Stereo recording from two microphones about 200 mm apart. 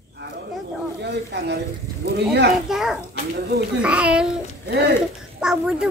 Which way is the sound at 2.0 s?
55° right (ahead or behind).